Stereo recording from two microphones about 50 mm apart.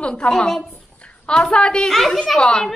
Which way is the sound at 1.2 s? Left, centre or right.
Centre.